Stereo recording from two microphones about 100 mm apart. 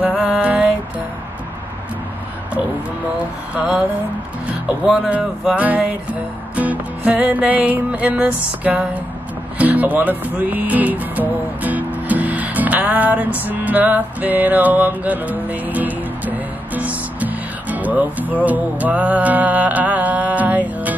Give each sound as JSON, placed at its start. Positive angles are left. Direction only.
{"t": 0.0, "sound": "music", "side_deg": -10}
{"t": 3.5, "sound": "music", "side_deg": -15}